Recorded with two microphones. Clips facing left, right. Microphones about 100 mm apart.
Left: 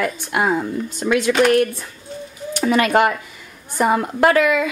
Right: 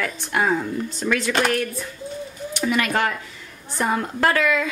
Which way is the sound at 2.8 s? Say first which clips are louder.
Left 8 dB; 25° left (ahead or behind).